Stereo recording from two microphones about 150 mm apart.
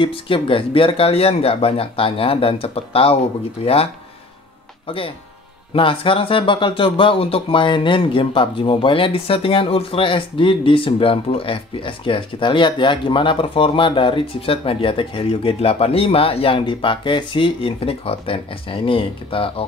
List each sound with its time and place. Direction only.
0.0 s speech: 35° left (ahead or behind)